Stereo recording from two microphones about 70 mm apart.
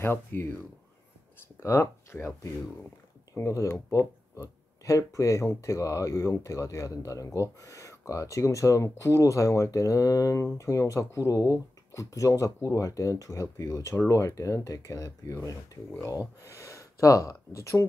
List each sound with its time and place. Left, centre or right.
0.0 s speech: left
1.6 s speech: left
3.3 s speech: left